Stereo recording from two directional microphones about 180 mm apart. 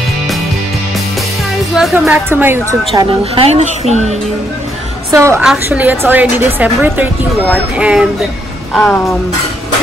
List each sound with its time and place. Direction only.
1.7 s music: centre (ahead or behind)
2.0 s a woman's voice: 10° right (ahead or behind)
3.0 s a woman's voice: 35° right (ahead or behind)
5.1 s a woman's voice: 15° right (ahead or behind); by 9.0 s 5° left (ahead or behind)